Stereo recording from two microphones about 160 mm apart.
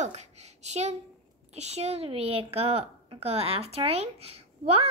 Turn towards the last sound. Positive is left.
turn(degrees=-40)  # may be behind; listen again after turning